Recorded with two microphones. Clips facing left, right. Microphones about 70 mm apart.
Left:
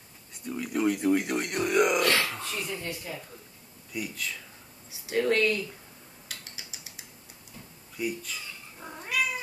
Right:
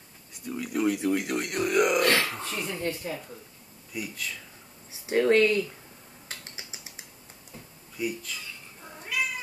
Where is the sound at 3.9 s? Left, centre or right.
Centre.